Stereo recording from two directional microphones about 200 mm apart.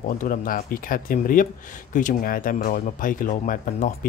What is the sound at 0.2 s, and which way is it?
Speech, 45° left (ahead or behind).